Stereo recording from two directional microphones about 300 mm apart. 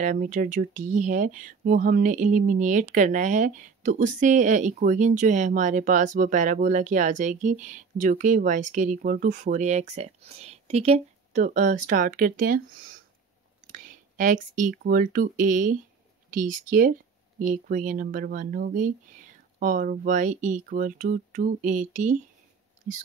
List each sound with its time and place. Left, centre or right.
0.0 s speech: right
13.7 s speech: right